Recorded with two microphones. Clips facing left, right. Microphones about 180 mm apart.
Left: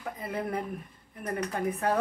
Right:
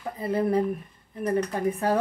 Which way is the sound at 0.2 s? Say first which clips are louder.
Right 10 dB; 30° right (ahead or behind).